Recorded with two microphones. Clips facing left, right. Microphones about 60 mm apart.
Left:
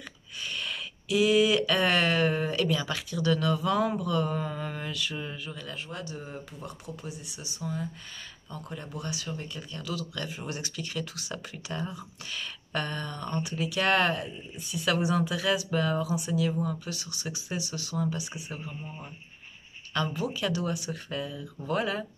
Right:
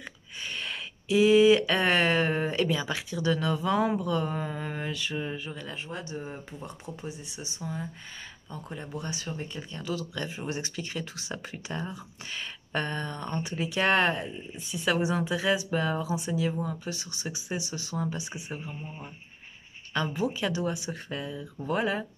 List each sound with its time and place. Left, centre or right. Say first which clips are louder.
0.4 s speech: even; right
19.9 s speech: right 1 dB; right